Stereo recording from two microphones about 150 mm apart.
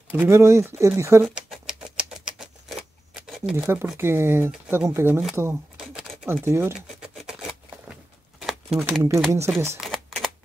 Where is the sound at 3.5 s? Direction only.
15° right (ahead or behind).